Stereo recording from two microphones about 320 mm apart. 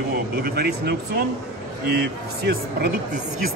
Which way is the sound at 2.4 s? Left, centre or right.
Right.